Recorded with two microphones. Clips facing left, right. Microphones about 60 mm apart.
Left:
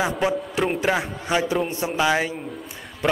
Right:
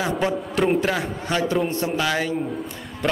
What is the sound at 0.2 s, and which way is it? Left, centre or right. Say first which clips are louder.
A man's voice: right 1 dB; centre.